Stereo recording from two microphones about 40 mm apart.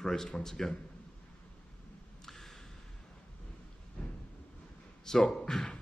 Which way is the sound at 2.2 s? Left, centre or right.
Centre.